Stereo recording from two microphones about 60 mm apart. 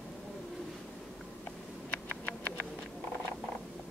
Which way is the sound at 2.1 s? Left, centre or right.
Left.